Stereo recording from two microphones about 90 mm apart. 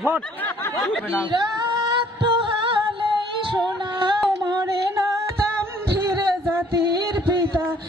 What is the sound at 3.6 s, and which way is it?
Music, 50° right (ahead or behind).